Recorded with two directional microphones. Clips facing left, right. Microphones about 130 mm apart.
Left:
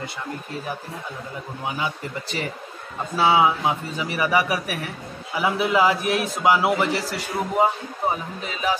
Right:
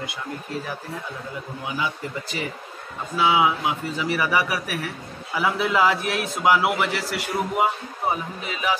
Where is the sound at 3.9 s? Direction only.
20° left (ahead or behind).